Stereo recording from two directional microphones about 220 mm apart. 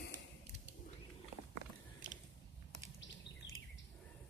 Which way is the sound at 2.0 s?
35° right (ahead or behind).